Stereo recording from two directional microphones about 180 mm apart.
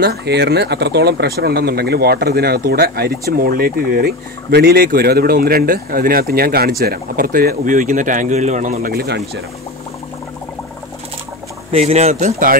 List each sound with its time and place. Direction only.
0.0 s speech: 65° right (ahead or behind)
11.7 s speech: 35° right (ahead or behind)